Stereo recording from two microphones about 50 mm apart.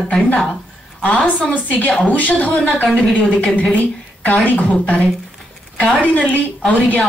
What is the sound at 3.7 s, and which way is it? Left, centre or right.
A woman's voice, left.